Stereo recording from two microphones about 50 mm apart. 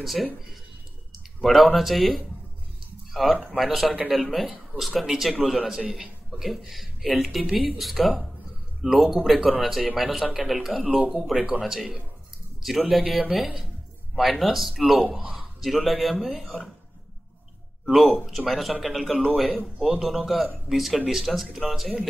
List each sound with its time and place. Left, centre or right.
0.0 s speech: centre
1.4 s speech: centre
3.1 s a sound: centre
3.5 s speech: centre
10.9 s speech: right
11.6 s a man's voice: centre
17.9 s speech: centre